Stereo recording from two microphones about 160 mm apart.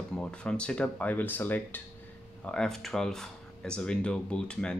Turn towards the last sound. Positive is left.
turn(degrees=5)  # may be behind; listen again after turning